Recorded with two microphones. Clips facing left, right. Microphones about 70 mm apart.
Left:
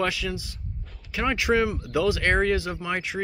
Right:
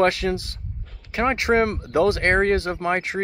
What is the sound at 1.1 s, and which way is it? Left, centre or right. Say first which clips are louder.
Speech: right 3 dB; right.